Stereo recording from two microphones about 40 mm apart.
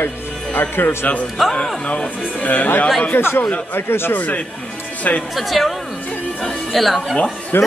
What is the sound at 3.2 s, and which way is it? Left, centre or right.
Speech, left.